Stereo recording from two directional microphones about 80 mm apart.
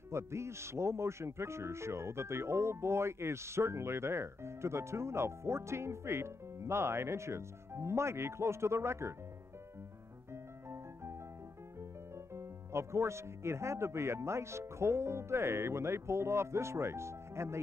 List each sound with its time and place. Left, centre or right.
0.1 s speech: right
10.3 s music: right
12.4 s speech: right